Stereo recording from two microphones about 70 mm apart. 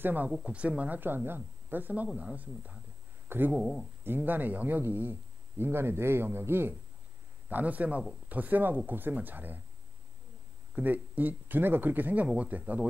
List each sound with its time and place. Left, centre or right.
0.0 s speech: right
3.5 s speech: centre
4.0 s speech: right
7.4 s speech: right
10.8 s speech: right